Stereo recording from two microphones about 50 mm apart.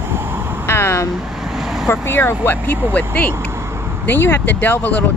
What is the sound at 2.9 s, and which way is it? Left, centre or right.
Speech, left.